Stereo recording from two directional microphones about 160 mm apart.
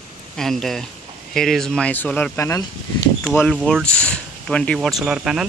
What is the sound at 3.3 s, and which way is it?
Speech, 5° left (ahead or behind).